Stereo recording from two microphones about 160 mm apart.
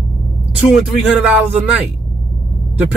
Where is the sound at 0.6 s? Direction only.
5° right (ahead or behind).